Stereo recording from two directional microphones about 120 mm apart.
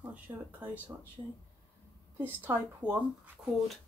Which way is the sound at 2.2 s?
15° right (ahead or behind).